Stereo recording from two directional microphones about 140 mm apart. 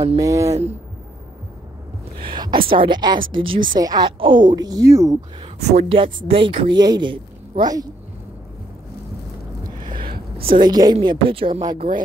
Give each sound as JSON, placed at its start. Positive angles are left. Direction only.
{"t": 0.2, "sound": "a woman's voice", "side_deg": -20}
{"t": 2.1, "sound": "a sound", "side_deg": -35}
{"t": 2.7, "sound": "a woman's voice", "side_deg": -35}
{"t": 5.7, "sound": "a woman's voice", "side_deg": -55}
{"t": 5.9, "sound": "a woman's voice", "side_deg": -40}
{"t": 9.8, "sound": "a sound", "side_deg": -90}
{"t": 10.4, "sound": "a woman's voice", "side_deg": -35}